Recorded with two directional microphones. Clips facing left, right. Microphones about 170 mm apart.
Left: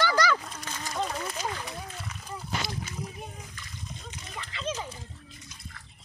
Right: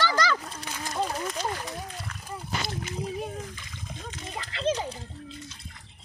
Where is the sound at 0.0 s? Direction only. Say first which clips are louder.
Left 1 dB; 10° left (ahead or behind).